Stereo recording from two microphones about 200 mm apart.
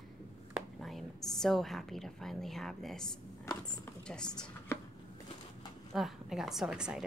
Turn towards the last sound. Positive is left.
turn(degrees=-5)  # may be behind; listen again after turning